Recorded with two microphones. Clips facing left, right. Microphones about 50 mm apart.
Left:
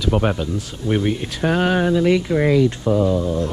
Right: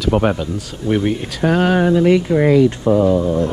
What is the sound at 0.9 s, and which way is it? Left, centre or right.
Speech, centre.